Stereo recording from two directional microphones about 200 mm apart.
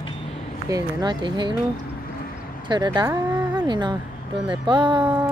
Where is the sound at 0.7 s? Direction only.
15° right (ahead or behind).